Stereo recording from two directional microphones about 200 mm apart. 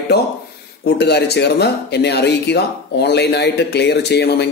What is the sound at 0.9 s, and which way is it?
Speech, 55° left (ahead or behind).